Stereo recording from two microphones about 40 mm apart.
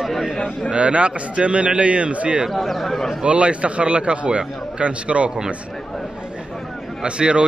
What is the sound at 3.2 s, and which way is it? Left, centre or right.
A man's voice, right.